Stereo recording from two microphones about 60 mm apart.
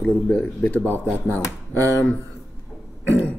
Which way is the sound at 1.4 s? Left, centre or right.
Left.